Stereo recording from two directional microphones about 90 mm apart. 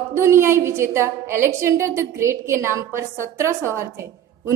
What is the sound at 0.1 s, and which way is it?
A woman's voice, 30° right (ahead or behind).